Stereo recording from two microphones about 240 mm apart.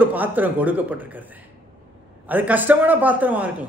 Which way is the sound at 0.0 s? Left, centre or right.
Centre.